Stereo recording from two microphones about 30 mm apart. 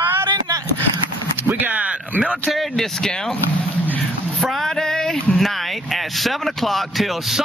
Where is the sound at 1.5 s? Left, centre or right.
Right.